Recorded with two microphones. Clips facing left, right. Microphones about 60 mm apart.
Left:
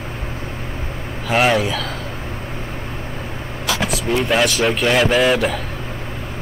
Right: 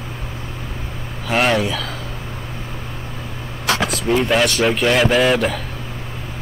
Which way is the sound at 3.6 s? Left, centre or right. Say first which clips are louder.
Right 2 dB; right.